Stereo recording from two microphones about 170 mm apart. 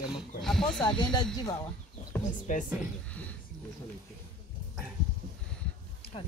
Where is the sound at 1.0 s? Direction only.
25° left (ahead or behind).